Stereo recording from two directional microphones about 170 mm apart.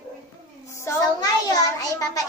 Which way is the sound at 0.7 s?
15° left (ahead or behind).